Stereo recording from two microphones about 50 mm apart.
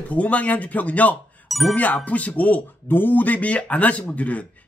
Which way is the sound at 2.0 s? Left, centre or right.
Left.